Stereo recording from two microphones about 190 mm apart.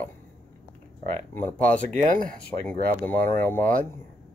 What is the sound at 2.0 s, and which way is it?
Speech, 45° right (ahead or behind).